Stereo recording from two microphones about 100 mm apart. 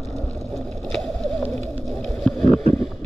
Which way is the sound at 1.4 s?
90° right.